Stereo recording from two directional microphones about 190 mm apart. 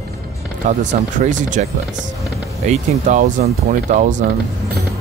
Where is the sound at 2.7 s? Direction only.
40° right (ahead or behind).